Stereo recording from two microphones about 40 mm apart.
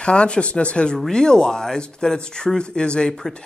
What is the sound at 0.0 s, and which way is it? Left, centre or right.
Speech, left.